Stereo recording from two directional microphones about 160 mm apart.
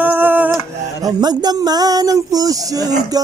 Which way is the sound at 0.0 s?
10° right (ahead or behind).